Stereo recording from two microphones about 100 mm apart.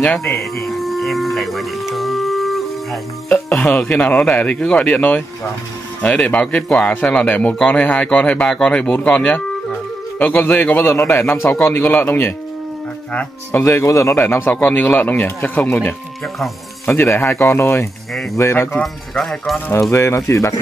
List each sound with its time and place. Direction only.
0.4 s music: centre (ahead or behind)
3.3 s speech: 15° left (ahead or behind); by 18.8 s 30° left (ahead or behind)
18.8 s speech: 5° left (ahead or behind)
19.7 s speech: 25° left (ahead or behind)